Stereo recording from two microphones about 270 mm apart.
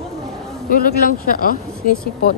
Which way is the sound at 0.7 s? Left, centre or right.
Left.